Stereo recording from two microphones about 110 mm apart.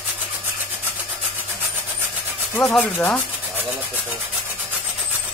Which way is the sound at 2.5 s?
20° left (ahead or behind).